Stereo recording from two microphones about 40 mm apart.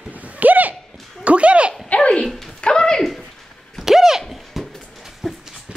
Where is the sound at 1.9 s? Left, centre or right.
Left.